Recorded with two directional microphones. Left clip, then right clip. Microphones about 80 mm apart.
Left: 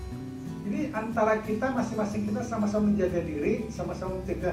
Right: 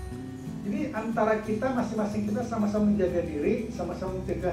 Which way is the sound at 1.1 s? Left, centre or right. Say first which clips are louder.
Even; left.